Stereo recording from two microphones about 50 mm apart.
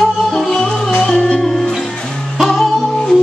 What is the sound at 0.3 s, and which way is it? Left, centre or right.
Music, centre.